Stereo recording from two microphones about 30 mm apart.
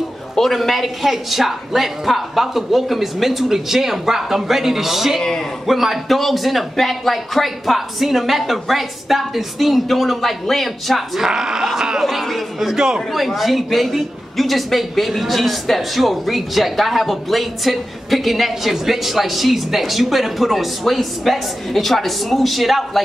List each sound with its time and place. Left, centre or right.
0.4 s a man's voice: centre
6.0 s speech: centre
11.1 s speech: right
12.0 s speech: centre
12.5 s speech: centre
13.1 s speech: centre